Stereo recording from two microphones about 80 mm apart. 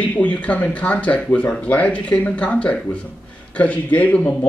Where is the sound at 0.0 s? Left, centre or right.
Centre.